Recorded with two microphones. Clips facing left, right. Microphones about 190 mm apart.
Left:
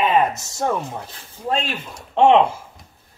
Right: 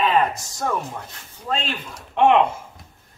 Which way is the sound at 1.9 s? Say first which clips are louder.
Left 3 dB; 30° left (ahead or behind).